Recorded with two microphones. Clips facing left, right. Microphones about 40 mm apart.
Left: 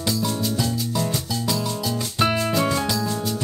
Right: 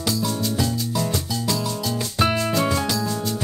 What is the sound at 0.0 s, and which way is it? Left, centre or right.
Music, centre.